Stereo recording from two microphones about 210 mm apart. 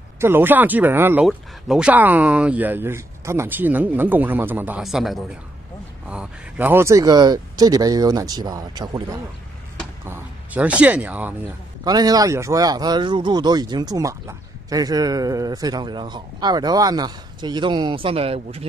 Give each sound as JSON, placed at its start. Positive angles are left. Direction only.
{"t": 0.2, "sound": "speech", "side_deg": -10}
{"t": 10.0, "sound": "speech", "side_deg": -10}
{"t": 11.8, "sound": "speech", "side_deg": -20}